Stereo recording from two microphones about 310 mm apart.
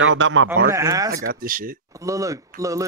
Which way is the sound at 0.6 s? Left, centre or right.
Centre.